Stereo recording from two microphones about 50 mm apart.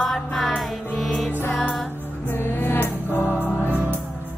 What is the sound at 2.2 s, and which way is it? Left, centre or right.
Music, left.